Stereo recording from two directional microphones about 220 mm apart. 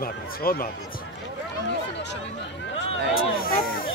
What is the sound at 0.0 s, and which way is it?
Speech, 40° left (ahead or behind).